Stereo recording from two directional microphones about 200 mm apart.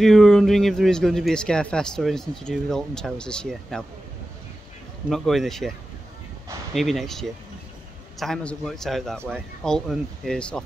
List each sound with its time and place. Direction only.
0.0 s speech: centre (ahead or behind)
5.1 s speech: centre (ahead or behind)
6.7 s speech: centre (ahead or behind)